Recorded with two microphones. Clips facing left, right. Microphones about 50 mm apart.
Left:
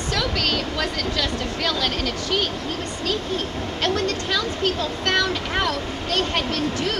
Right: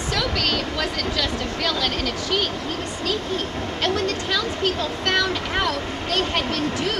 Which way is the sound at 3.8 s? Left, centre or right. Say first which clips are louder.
Even; centre.